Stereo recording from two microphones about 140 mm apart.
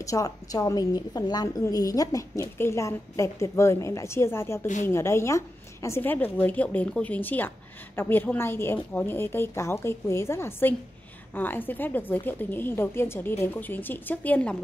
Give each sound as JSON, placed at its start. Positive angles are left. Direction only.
{"t": 0.0, "sound": "a woman's voice", "side_deg": 25}